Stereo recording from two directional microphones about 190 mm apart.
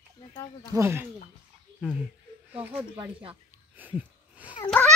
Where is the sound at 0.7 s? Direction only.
15° right (ahead or behind).